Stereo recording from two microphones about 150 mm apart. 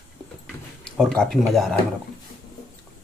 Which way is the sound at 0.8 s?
5° left (ahead or behind).